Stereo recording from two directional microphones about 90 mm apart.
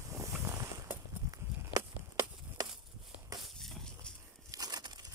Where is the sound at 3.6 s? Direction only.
5° left (ahead or behind).